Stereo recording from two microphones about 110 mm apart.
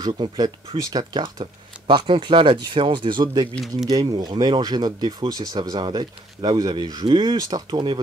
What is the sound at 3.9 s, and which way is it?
Speech, 35° right (ahead or behind).